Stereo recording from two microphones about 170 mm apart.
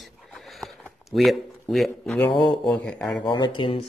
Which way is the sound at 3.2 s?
25° left (ahead or behind).